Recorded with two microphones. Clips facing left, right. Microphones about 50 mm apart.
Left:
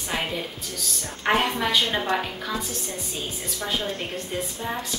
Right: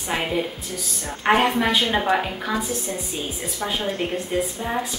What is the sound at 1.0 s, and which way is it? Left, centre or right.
A woman's voice, centre.